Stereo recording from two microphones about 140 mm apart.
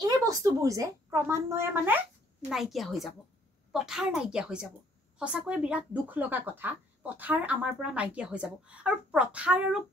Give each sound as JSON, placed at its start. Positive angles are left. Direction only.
{"t": 0.0, "sound": "a woman's voice", "side_deg": -25}
{"t": 2.5, "sound": "speech", "side_deg": 0}